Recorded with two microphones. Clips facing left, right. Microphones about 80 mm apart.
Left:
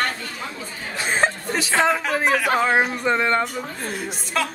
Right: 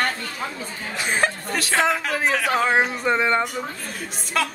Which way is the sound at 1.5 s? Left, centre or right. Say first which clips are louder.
Left 1 dB; centre.